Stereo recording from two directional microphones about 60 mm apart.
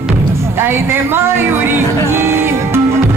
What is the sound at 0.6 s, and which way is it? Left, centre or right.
Speech, right.